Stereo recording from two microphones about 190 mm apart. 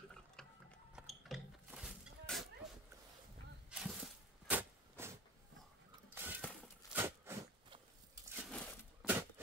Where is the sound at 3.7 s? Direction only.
5° right (ahead or behind).